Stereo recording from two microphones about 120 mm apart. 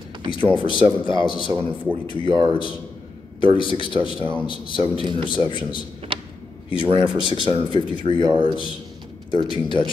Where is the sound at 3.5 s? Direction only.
45° left (ahead or behind).